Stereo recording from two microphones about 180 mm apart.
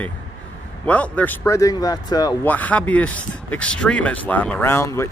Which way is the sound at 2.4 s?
10° left (ahead or behind).